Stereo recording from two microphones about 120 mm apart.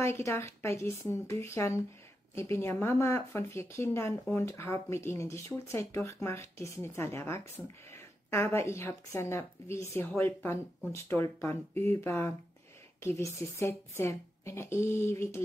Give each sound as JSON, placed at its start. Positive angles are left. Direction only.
{"t": 0.0, "sound": "a woman's voice", "side_deg": 20}